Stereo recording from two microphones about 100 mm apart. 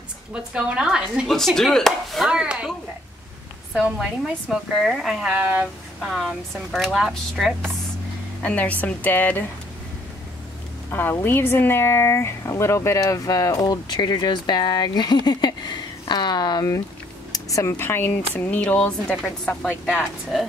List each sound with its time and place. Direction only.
0.3 s a woman's voice: 10° right (ahead or behind)
2.2 s a woman's voice: 10° right (ahead or behind)
3.7 s speech: 5° right (ahead or behind)
5.4 s a woman's voice: 15° right (ahead or behind)
8.4 s speech: 15° left (ahead or behind)
10.9 s speech: 20° left (ahead or behind); by 20.4 s centre (ahead or behind)